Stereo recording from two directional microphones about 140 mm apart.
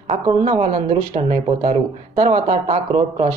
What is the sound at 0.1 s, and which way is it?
Speech, 55° right (ahead or behind).